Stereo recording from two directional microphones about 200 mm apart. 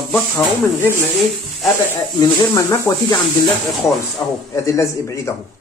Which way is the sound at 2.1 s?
15° left (ahead or behind).